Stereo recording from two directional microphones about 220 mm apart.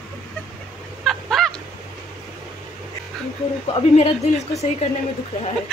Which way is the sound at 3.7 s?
25° left (ahead or behind).